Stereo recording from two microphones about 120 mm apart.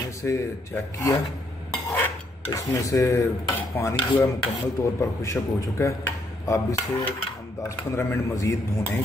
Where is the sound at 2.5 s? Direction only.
25° left (ahead or behind).